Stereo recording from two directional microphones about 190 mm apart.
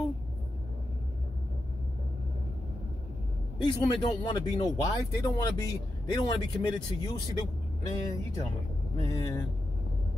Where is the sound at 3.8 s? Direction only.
20° left (ahead or behind).